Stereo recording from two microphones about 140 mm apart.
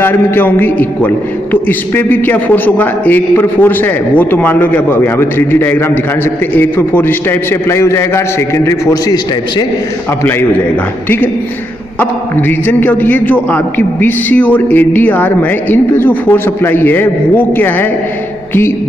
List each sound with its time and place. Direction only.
0.0 s a man's voice: 15° left (ahead or behind)
12.0 s a man's voice: 15° left (ahead or behind)